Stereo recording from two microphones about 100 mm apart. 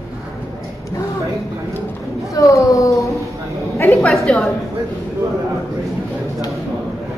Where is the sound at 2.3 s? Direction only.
30° left (ahead or behind).